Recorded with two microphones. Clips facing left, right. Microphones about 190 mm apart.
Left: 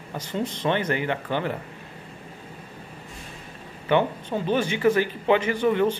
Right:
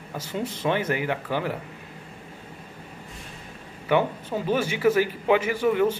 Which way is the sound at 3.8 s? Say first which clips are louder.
Left 1 dB; 5° right (ahead or behind).